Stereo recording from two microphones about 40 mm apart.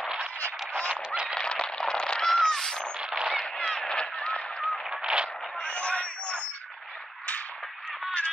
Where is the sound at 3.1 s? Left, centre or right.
Centre.